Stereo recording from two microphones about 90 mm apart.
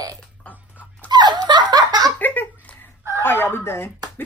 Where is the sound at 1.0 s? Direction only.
55° right (ahead or behind).